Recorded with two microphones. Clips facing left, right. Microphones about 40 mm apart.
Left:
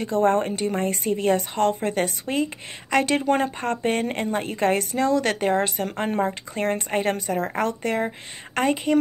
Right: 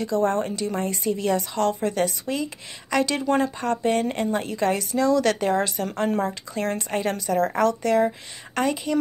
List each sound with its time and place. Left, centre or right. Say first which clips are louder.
0.0 s a woman's voice: left 2 dB; left
7.3 s a woman's voice: right 4 dB; left